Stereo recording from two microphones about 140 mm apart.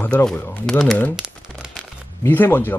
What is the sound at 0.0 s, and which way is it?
Speech, 10° left (ahead or behind).